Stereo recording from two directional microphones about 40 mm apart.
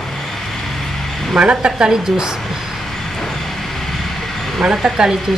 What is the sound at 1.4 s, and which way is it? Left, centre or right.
Speech, right.